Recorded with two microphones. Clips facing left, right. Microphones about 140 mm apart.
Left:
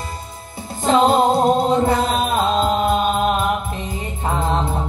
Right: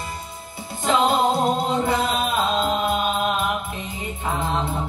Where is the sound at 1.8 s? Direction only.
45° left (ahead or behind).